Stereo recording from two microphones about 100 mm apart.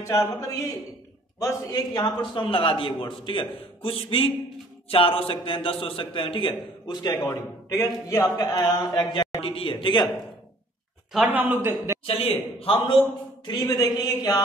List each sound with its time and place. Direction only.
0.0 s a man's voice: 30° left (ahead or behind)
2.4 s a man's voice: 60° left (ahead or behind); by 7.3 s 45° left (ahead or behind)
7.7 s a man's voice: 30° left (ahead or behind); by 10.1 s 50° left (ahead or behind)
11.3 s a man's voice: 20° right (ahead or behind)
12.1 s a man's voice: 80° left; by 13.0 s 55° left (ahead or behind)
13.5 s a man's voice: 40° left (ahead or behind)